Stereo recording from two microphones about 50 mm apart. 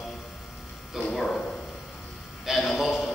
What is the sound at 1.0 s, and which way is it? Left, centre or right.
Speech, centre.